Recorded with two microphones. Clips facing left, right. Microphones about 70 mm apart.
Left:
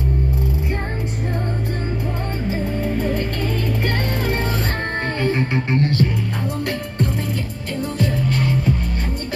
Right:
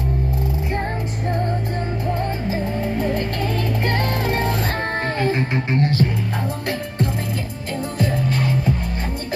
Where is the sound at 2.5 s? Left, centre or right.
Centre.